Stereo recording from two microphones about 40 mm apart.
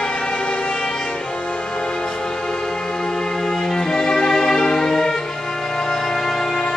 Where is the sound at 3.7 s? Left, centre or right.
Centre.